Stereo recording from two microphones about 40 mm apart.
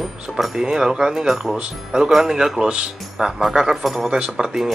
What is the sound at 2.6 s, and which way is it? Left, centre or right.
Speech, right.